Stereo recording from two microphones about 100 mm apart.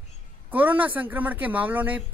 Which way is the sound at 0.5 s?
15° right (ahead or behind).